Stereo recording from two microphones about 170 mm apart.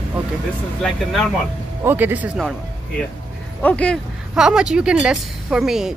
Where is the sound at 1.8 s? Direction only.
10° right (ahead or behind); by 4.0 s 10° left (ahead or behind).